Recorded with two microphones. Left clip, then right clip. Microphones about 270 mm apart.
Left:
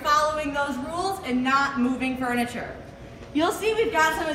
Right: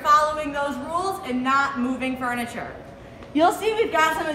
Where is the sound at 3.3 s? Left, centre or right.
Right.